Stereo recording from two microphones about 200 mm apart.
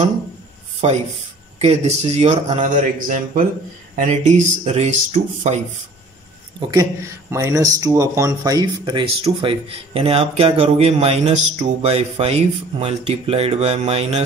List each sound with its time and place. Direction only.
0.8 s speech: 30° right (ahead or behind)
6.7 s speech: 15° right (ahead or behind); by 14.2 s 30° right (ahead or behind)